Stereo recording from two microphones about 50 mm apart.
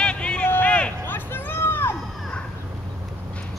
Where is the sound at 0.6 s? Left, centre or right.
Left.